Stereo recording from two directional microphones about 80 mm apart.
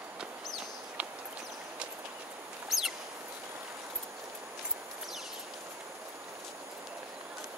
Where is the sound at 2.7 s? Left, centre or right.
Centre.